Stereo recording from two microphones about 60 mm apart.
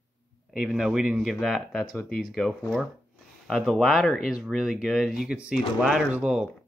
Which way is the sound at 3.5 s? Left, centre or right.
Centre.